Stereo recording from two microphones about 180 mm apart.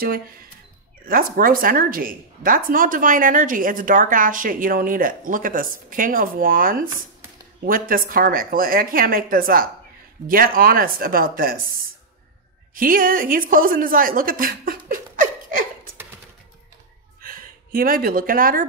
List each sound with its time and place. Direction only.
1.0 s speech: 50° right (ahead or behind)
12.7 s speech: 50° right (ahead or behind)
17.2 s speech: 50° right (ahead or behind)